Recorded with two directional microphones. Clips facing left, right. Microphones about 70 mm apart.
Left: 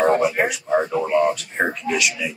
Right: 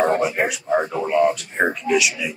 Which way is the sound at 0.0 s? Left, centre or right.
Centre.